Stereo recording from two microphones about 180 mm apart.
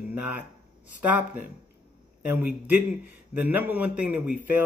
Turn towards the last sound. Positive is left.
turn(degrees=-10)  # may be behind; listen again after turning